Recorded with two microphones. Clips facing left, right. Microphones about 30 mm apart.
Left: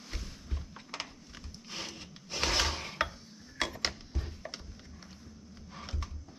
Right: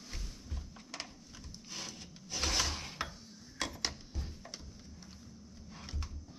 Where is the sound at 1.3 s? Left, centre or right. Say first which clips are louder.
Left 3 dB; left.